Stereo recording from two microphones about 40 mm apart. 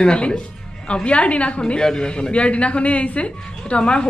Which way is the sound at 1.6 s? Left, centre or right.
Centre.